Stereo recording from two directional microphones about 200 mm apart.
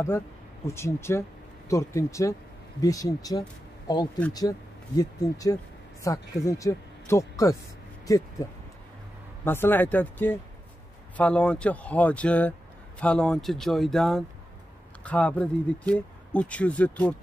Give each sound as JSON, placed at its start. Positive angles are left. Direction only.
{"t": 0.7, "sound": "speech", "side_deg": 15}
{"t": 9.4, "sound": "speech", "side_deg": 10}